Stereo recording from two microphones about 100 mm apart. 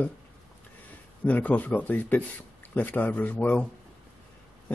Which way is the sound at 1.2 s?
15° left (ahead or behind).